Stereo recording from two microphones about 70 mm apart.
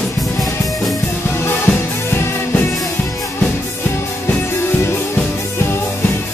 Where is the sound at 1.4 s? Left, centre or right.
Left.